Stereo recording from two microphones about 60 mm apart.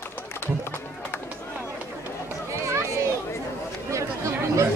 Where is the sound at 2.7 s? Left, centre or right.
Right.